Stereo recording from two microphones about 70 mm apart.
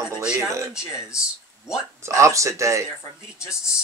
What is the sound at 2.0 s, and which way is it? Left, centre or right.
Speech, right.